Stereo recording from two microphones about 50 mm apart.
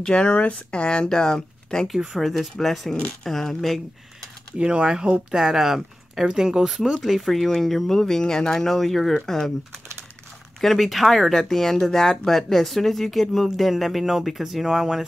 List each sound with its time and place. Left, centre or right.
0.0 s speech: centre
1.9 s speech: centre
4.6 s speech: right; by 9.2 s centre
10.6 s speech: centre